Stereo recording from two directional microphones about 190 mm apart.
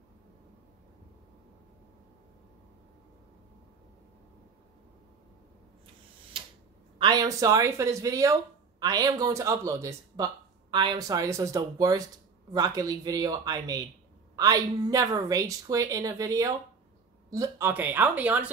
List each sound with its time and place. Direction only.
7.0 s a woman's voice: 20° right (ahead or behind)